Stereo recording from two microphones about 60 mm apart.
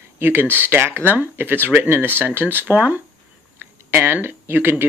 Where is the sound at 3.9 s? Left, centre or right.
Right.